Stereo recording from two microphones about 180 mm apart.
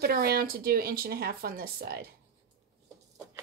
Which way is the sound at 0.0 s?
60° right (ahead or behind).